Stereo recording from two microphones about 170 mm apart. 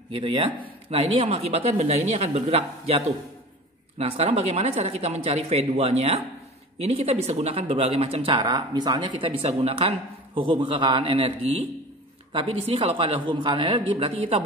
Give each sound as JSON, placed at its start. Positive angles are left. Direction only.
{"t": 0.1, "sound": "speech", "side_deg": -35}
{"t": 4.0, "sound": "speech", "side_deg": -35}
{"t": 8.4, "sound": "speech", "side_deg": -25}